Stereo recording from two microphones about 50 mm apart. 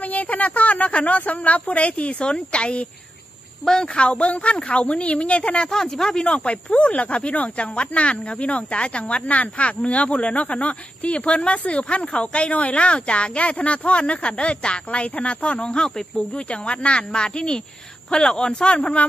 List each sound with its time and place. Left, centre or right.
0.0 s speech: left
3.6 s speech: centre
3.9 s speech: left
5.7 s speech: centre